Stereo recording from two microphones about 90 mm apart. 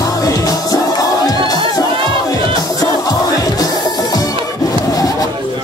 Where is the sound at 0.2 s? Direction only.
40° left (ahead or behind).